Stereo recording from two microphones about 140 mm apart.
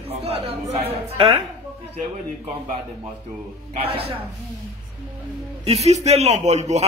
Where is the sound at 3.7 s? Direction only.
45° right (ahead or behind).